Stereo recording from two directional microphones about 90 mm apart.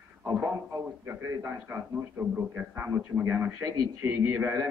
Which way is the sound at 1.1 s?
25° right (ahead or behind).